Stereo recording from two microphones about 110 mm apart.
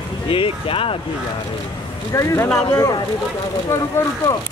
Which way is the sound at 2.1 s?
25° left (ahead or behind).